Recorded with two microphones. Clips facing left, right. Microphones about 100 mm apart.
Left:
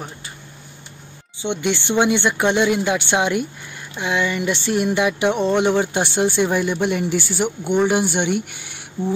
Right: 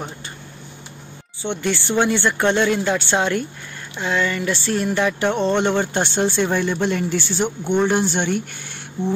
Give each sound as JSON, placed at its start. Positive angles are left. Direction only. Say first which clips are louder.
{"t": 1.4, "sound": "speech", "louder": "left 1 dB", "side_deg": 15}